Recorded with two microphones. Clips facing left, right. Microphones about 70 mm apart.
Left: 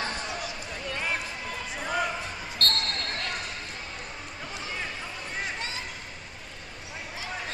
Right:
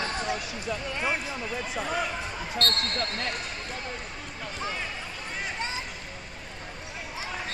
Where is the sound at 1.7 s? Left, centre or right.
Centre.